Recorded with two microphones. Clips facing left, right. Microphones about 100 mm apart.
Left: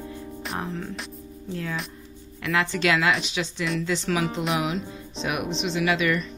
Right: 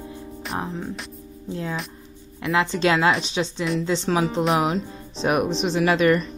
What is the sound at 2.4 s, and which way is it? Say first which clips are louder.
Speech: right 3 dB; 25° right (ahead or behind).